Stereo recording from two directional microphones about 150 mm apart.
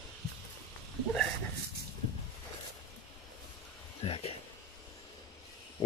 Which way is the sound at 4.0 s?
40° left (ahead or behind).